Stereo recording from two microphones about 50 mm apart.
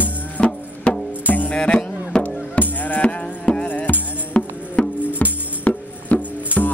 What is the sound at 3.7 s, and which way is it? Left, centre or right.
Music, left.